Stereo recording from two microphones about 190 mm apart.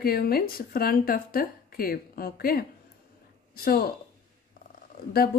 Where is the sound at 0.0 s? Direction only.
55° left (ahead or behind).